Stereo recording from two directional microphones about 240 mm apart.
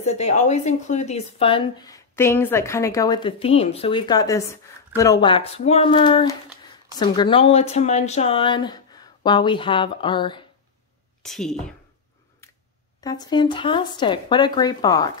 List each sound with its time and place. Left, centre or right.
0.0 s speech: left
11.2 s speech: centre
13.0 s speech: centre